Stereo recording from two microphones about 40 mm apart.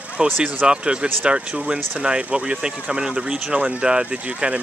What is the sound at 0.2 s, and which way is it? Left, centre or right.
Speech, right.